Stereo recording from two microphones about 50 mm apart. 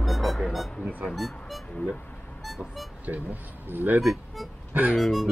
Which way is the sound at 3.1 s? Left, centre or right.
Right.